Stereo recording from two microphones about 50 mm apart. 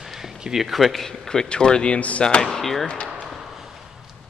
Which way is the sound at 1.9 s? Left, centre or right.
Left.